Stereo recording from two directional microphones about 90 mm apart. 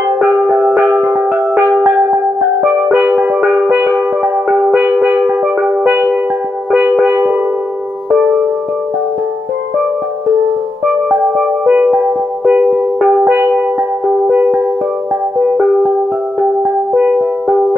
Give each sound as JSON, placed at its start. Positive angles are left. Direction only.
{"t": 0.5, "sound": "music", "side_deg": -15}
{"t": 1.8, "sound": "music", "side_deg": -30}
{"t": 2.6, "sound": "music", "side_deg": -5}
{"t": 6.7, "sound": "music", "side_deg": -5}
{"t": 11.6, "sound": "music", "side_deg": -15}
{"t": 14.2, "sound": "music", "side_deg": -20}